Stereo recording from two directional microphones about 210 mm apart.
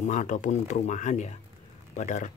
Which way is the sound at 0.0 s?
35° left (ahead or behind).